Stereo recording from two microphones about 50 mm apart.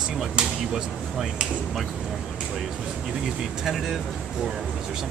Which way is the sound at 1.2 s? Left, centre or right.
Centre.